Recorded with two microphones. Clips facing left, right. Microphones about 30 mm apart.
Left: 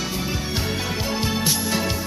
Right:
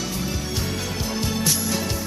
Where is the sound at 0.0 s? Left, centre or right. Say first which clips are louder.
Left 1 dB; left.